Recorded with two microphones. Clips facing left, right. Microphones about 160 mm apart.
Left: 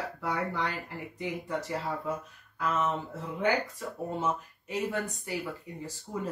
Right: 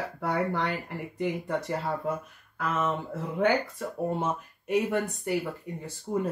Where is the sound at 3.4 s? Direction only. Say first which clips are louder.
Right 3 dB; 60° right (ahead or behind).